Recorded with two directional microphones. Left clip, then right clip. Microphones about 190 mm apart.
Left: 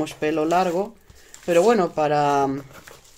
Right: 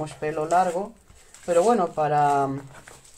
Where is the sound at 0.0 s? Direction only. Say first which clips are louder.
Left 5 dB; 35° left (ahead or behind).